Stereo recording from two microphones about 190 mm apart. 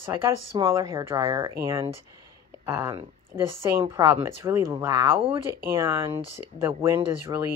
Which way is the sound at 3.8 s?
20° right (ahead or behind).